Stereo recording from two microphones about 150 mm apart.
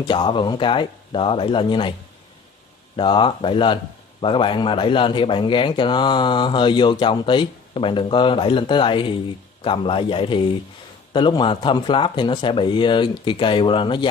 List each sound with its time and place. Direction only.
0.1 s speech: 35° left (ahead or behind)
3.0 s speech: 35° left (ahead or behind)